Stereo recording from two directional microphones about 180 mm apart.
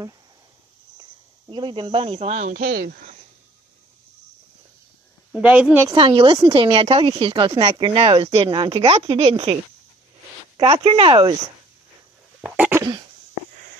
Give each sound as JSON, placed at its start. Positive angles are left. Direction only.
{"t": 1.5, "sound": "speech", "side_deg": -25}
{"t": 5.3, "sound": "speech", "side_deg": -5}
{"t": 5.9, "sound": "a woman's voice", "side_deg": -30}
{"t": 10.6, "sound": "a woman's voice", "side_deg": -30}
{"t": 12.4, "sound": "cough", "side_deg": -10}